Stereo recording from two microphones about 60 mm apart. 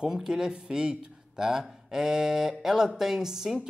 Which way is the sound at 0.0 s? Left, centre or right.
Centre.